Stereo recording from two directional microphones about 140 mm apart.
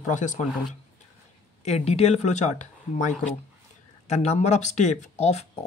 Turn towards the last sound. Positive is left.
turn(degrees=50)  # may be behind; listen again after turning